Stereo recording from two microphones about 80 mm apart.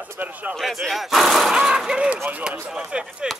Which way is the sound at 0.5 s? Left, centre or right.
Centre.